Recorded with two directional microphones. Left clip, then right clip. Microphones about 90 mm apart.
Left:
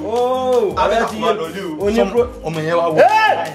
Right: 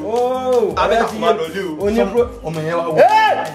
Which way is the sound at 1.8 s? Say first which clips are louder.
Left 1 dB; 5° left (ahead or behind).